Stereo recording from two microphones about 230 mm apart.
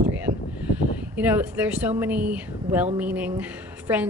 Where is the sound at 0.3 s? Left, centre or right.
Right.